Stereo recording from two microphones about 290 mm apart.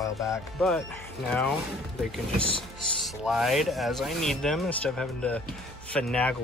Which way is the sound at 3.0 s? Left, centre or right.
Centre.